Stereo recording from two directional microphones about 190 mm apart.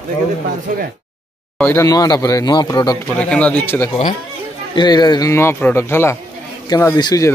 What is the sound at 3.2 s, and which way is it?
Speech, 5° left (ahead or behind).